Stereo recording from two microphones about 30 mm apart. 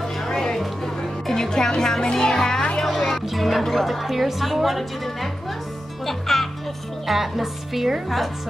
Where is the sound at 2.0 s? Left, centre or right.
Left.